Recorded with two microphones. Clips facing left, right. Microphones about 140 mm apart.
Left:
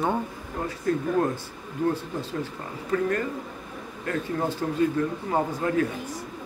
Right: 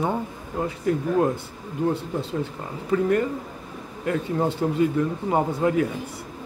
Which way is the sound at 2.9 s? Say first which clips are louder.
Right 4 dB; 20° right (ahead or behind).